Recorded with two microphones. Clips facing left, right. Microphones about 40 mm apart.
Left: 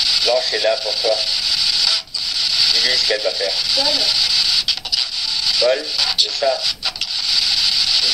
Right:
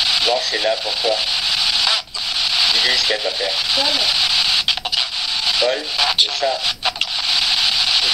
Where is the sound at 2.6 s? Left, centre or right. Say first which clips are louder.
Right 1 dB; right.